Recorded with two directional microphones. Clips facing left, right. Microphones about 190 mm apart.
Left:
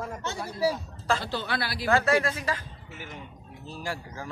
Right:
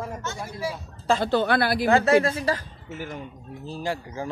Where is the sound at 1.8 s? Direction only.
25° right (ahead or behind); by 3.1 s 40° right (ahead or behind).